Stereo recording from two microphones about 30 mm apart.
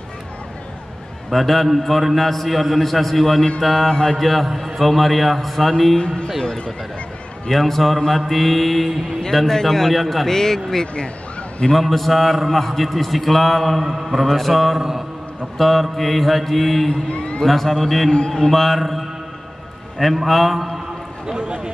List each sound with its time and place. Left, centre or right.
1.3 s a man's voice: centre
3.7 s a man's voice: centre
4.2 s a man's voice: centre
5.9 s speech: left
7.4 s a man's voice: centre
13.8 s a man's voice: centre
14.8 s a man's voice: centre
15.5 s a man's voice: centre
17.1 s a man's voice: left
17.5 s a man's voice: centre
20.2 s a man's voice: centre
21.3 s a sound: right